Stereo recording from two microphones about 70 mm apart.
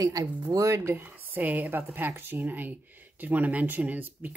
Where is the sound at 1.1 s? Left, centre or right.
Right.